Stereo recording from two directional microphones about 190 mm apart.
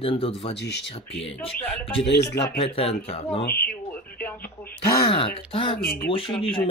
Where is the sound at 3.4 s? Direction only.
55° left (ahead or behind).